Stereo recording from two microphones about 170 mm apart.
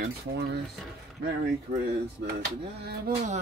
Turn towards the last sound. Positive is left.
turn(degrees=-70)  # may be behind; listen again after turning